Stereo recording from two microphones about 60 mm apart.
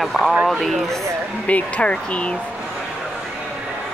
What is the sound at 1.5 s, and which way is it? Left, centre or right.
Speech, centre.